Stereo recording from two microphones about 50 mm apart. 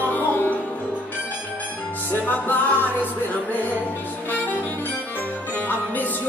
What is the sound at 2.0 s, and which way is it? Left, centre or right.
Music, left.